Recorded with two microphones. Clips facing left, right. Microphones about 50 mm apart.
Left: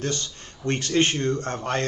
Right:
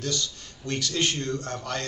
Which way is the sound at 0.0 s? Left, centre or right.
Left.